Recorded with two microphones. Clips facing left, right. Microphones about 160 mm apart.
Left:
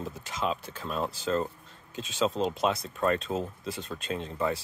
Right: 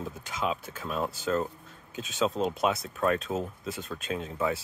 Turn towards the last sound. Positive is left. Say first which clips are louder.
# even
turn(degrees=0)  # may be behind; listen again after turning